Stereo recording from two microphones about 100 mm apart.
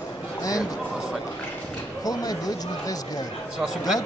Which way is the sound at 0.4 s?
35° left (ahead or behind).